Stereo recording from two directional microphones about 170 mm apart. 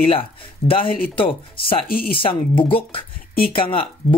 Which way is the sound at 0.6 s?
35° left (ahead or behind).